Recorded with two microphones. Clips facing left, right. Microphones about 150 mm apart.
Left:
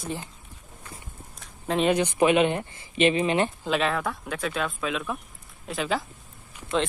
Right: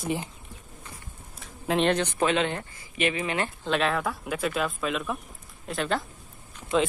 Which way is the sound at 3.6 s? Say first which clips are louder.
Even; centre (ahead or behind).